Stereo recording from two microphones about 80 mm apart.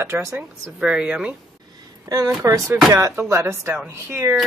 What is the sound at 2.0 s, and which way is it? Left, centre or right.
Speech, right.